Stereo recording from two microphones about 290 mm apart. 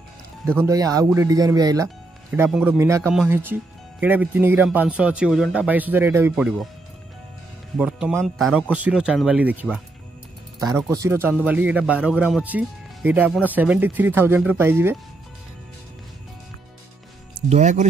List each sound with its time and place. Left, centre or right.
0.7 s speech: centre
7.7 s speech: centre
17.5 s speech: right